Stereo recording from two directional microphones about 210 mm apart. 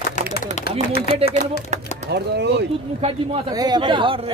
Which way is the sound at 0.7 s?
50° left (ahead or behind).